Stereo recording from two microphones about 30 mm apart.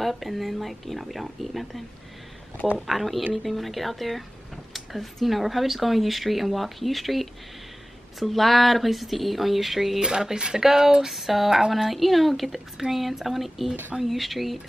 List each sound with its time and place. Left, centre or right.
0.0 s speech: centre
2.9 s speech: centre
9.9 s speech: right; by 14.6 s centre